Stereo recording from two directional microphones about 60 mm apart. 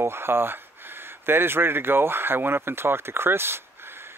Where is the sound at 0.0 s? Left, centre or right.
Right.